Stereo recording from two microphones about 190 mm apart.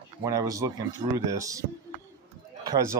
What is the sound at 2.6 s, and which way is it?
Speech, 15° right (ahead or behind).